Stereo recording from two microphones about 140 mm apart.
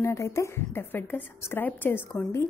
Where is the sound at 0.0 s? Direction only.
20° left (ahead or behind).